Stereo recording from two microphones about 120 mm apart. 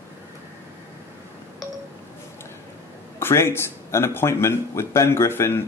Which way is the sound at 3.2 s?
20° left (ahead or behind).